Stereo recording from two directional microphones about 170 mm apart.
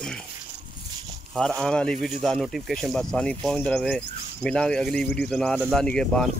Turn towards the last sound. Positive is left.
turn(degrees=5)  # may be behind; listen again after turning